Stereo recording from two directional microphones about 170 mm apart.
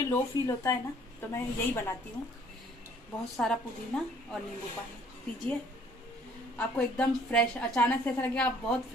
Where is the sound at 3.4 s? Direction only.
5° left (ahead or behind).